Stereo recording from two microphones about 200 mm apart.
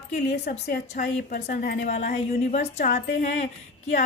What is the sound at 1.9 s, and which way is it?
Speech, 35° left (ahead or behind).